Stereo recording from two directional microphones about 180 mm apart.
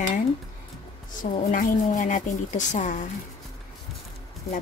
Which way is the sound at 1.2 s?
50° left (ahead or behind).